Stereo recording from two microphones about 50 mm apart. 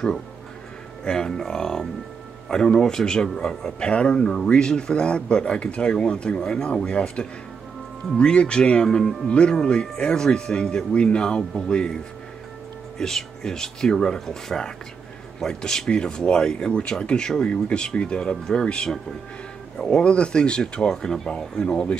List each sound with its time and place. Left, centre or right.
1.0 s speech: centre
20.0 s speech: left
21.5 s speech: left